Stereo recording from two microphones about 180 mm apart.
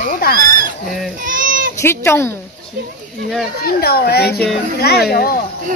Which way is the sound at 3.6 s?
60° left (ahead or behind).